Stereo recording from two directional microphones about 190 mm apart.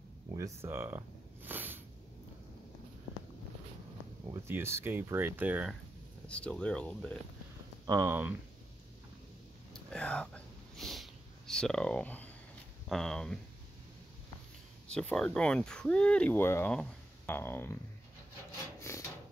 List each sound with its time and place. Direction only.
0.3 s snake: 15° right (ahead or behind)
4.3 s speech: 15° right (ahead or behind)
6.2 s speech: 5° left (ahead or behind)
7.8 s speech: 15° right (ahead or behind)
9.8 s whispering: 5° left (ahead or behind)
12.8 s speech: centre (ahead or behind)
14.9 s speech: 5° left (ahead or behind)
18.8 s rub: 15° left (ahead or behind)